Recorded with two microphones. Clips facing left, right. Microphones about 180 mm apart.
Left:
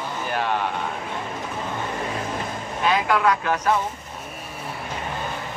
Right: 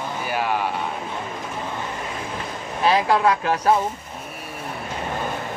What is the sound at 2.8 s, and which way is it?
Speech, 35° right (ahead or behind).